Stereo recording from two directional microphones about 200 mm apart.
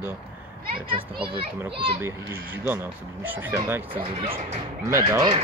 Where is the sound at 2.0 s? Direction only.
10° right (ahead or behind).